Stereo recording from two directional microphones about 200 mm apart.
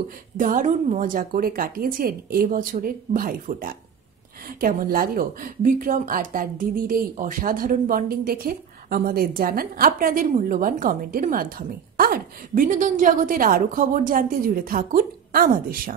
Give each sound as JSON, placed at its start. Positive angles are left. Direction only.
{"t": 0.4, "sound": "speech", "side_deg": -40}